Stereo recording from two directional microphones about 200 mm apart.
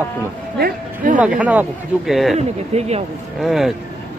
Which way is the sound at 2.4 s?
30° right (ahead or behind).